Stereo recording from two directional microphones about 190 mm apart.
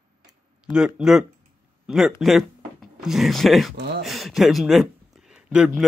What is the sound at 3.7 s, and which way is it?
Speech, 60° right (ahead or behind).